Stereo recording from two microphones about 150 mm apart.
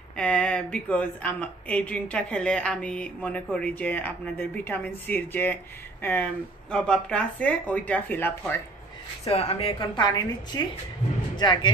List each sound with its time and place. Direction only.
0.1 s speech: 5° left (ahead or behind)
6.7 s speech: 5° left (ahead or behind)
9.2 s speech: 45° left (ahead or behind)
9.8 s a woman's voice: 30° left (ahead or behind)